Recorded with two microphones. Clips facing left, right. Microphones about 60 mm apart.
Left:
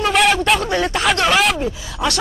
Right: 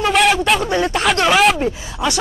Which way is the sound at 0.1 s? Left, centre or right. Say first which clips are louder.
Right 1 dB; centre.